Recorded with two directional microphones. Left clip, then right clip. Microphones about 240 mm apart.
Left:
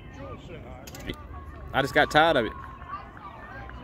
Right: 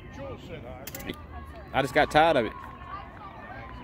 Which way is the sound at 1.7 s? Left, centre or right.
Centre.